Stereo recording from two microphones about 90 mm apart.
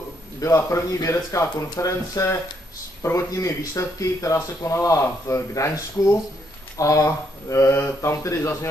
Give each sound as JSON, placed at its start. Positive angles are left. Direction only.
{"t": 0.4, "sound": "speech", "side_deg": 35}